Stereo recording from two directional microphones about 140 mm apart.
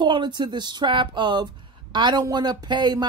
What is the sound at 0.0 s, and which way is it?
Speech, 35° right (ahead or behind).